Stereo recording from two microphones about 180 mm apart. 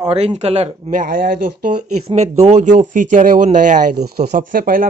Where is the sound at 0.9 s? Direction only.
50° right (ahead or behind).